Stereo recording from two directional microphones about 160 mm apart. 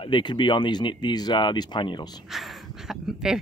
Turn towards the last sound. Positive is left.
turn(degrees=-5)  # may be behind; listen again after turning